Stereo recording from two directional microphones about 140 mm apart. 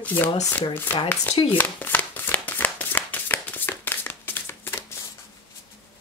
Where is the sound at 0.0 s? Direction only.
15° left (ahead or behind).